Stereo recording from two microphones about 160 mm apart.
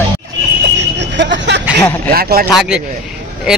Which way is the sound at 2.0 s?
70° right (ahead or behind).